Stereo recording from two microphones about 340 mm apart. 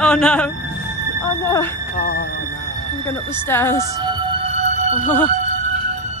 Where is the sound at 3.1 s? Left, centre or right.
Centre.